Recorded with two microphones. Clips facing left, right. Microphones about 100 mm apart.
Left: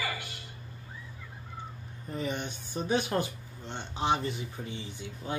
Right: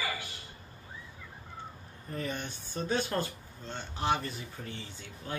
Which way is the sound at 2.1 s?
20° left (ahead or behind).